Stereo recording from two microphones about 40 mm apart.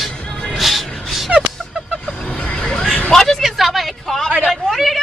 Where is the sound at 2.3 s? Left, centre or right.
Left; by 3.4 s centre.